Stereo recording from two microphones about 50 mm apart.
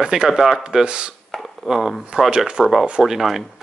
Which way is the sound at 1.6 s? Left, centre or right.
Centre.